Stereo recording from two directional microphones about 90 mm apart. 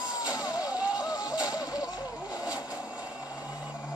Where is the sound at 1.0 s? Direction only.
40° left (ahead or behind).